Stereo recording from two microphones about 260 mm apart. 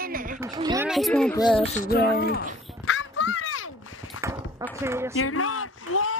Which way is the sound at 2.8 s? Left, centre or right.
Left.